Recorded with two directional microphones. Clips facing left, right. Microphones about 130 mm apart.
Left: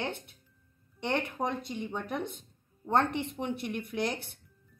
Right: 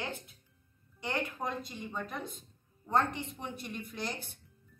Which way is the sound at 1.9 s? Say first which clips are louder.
Left 3 dB; 70° left (ahead or behind).